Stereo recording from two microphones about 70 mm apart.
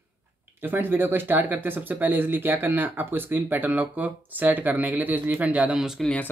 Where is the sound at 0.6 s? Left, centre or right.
Right.